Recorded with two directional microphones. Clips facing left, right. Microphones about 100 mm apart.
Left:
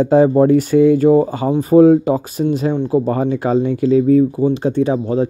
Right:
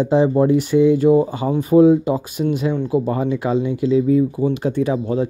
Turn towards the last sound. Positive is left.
turn(degrees=30)  # may be behind; listen again after turning